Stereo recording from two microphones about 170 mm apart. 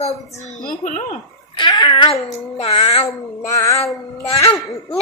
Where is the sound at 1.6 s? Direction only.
25° left (ahead or behind).